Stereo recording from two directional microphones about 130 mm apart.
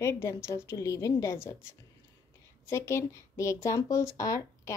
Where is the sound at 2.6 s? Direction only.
20° left (ahead or behind).